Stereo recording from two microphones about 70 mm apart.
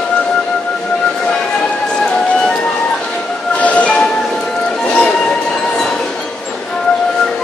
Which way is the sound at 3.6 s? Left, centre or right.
Centre.